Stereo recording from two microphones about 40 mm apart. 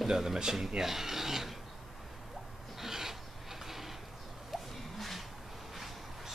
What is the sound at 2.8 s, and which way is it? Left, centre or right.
Filing, centre.